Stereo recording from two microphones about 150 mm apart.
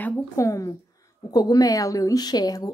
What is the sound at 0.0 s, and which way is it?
A woman's voice, 20° left (ahead or behind).